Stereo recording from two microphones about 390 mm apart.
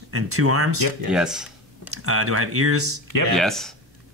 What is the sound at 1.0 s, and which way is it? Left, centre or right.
Speech, centre.